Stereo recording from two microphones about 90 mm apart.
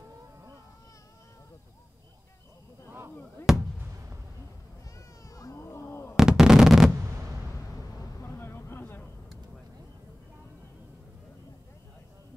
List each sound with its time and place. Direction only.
3.5 s fireworks: 5° right (ahead or behind)
4.9 s cat: 40° left (ahead or behind)
6.1 s a sound: 5° right (ahead or behind)
8.2 s vehicle: 25° left (ahead or behind)